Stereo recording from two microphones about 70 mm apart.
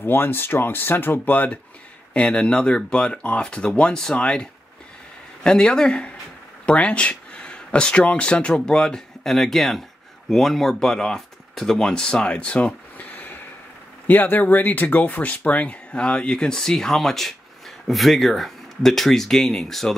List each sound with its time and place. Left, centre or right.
0.0 s speech: left; by 20.0 s centre